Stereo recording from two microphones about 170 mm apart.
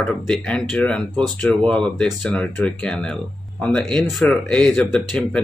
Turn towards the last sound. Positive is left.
turn(degrees=10)  # may be behind; listen again after turning